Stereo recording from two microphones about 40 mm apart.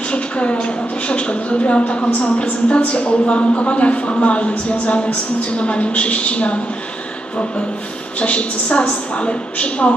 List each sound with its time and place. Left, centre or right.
0.1 s a woman's voice: left
8.2 s speech: left